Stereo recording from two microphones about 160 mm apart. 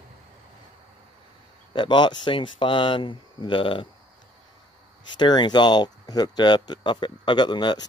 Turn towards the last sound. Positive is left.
turn(degrees=30)  # may be behind; listen again after turning